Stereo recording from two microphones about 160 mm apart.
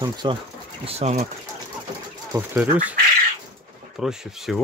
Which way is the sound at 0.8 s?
40° right (ahead or behind).